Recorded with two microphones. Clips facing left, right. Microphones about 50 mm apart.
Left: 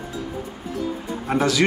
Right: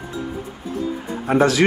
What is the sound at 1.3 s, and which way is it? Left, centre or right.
Speech, right.